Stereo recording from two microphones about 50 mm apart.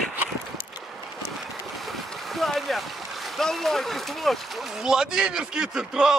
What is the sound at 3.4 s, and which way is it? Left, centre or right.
Speech, centre.